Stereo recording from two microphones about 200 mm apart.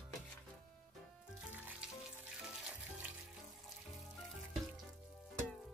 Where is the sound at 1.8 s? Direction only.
5° right (ahead or behind).